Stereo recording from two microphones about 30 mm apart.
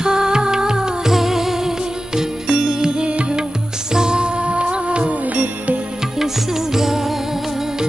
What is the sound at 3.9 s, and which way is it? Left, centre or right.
Music, right.